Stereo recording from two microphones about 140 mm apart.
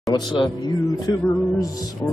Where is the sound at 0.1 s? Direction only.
30° left (ahead or behind).